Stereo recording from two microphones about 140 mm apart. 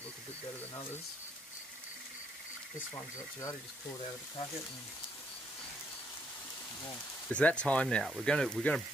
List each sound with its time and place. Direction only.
2.9 s speech: 25° left (ahead or behind)
7.2 s speech: 10° left (ahead or behind)